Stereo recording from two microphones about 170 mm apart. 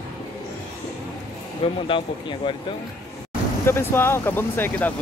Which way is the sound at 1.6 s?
30° left (ahead or behind).